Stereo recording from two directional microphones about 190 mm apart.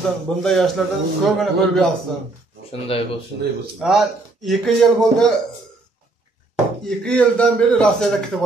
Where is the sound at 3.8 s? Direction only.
Centre (ahead or behind).